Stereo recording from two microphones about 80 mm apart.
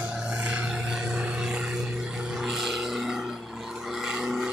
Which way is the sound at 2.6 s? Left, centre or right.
Centre.